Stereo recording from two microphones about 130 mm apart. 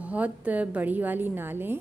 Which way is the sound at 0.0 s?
10° right (ahead or behind).